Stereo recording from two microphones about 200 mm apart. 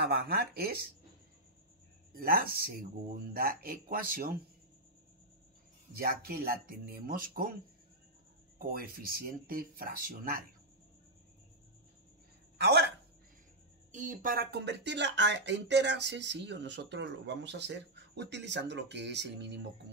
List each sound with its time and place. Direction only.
0.0 s speech: 55° right (ahead or behind)
2.1 s speech: 45° right (ahead or behind)
5.9 s speech: 50° right (ahead or behind)
8.5 s speech: 45° right (ahead or behind)
12.5 s speech: 55° right (ahead or behind)
13.9 s speech: 40° right (ahead or behind); by 19.7 s 60° right (ahead or behind)